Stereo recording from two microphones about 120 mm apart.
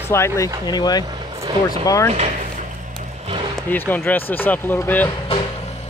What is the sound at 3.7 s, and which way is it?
Speech, 15° left (ahead or behind).